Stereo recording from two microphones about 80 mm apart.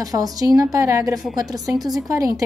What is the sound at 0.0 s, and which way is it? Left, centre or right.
A woman's voice, right.